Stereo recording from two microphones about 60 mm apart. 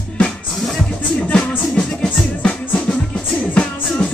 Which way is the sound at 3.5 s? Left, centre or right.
Centre.